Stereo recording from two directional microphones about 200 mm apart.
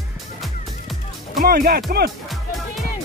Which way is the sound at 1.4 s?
50° right (ahead or behind).